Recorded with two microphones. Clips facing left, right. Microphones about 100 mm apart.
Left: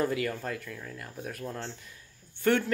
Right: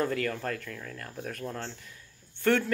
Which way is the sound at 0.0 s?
15° left (ahead or behind).